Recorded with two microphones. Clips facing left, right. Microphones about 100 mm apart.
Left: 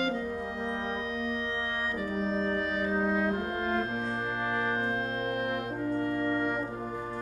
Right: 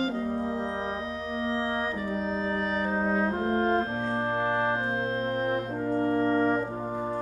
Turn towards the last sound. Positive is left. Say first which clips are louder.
# right 5 dB
turn(degrees=-35)  # may be behind; listen again after turning